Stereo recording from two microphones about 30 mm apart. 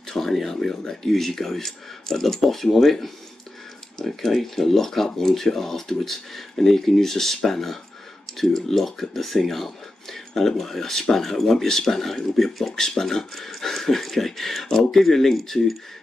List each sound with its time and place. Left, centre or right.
0.1 s speech: centre
12.7 s speech: left
13.0 s speech: centre